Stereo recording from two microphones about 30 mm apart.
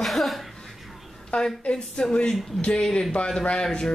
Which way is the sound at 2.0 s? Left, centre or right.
Left.